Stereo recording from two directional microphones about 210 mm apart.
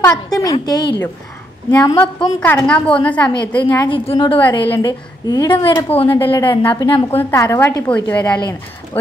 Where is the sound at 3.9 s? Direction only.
25° left (ahead or behind).